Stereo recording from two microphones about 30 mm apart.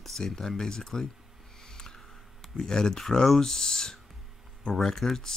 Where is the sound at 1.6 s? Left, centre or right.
Left.